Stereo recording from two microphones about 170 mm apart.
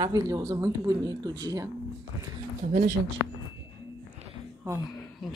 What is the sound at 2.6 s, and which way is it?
Speech, 50° right (ahead or behind).